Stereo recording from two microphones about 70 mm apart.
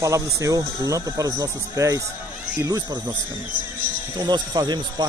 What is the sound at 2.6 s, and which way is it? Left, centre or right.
Speech, right.